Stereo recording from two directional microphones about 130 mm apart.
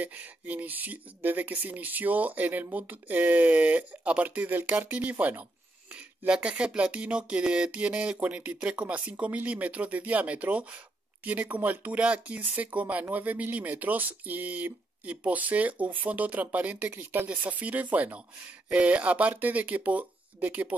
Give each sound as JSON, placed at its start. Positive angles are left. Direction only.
{"t": 0.0, "sound": "speech", "side_deg": -10}